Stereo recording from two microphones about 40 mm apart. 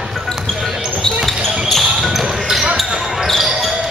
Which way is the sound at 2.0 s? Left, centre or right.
Centre.